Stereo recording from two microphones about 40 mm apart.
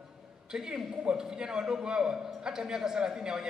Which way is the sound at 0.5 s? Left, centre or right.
Centre.